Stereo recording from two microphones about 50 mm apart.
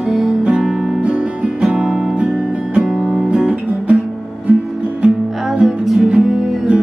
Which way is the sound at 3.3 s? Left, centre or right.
Right.